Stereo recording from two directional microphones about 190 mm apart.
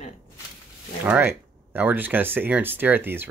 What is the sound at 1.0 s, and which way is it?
Speech, 10° right (ahead or behind).